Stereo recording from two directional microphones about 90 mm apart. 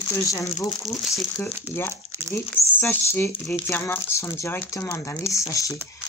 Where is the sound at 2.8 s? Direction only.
25° left (ahead or behind).